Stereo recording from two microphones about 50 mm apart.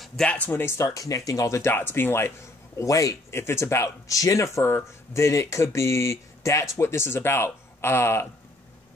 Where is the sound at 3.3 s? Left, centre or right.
Left.